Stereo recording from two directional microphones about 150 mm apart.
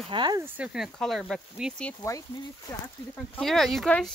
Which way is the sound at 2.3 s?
30° left (ahead or behind).